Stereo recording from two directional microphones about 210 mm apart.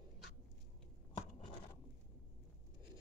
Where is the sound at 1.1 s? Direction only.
25° left (ahead or behind).